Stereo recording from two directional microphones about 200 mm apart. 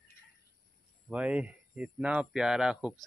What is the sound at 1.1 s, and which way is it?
Speech, 5° right (ahead or behind).